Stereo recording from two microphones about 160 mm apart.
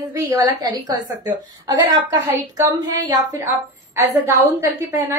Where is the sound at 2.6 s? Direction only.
25° right (ahead or behind).